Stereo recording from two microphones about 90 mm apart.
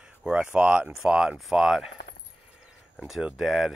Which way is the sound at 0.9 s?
5° right (ahead or behind).